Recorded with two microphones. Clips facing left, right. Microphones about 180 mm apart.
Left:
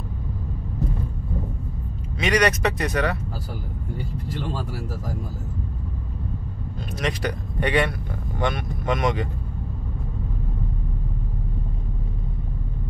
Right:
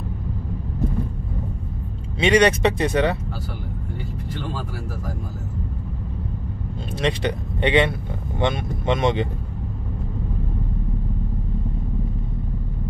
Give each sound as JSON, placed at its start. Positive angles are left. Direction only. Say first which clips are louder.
{"t": 2.1, "sound": "speech", "louder": "right 4 dB", "side_deg": -25}
{"t": 7.0, "sound": "speech", "louder": "right 4 dB", "side_deg": -25}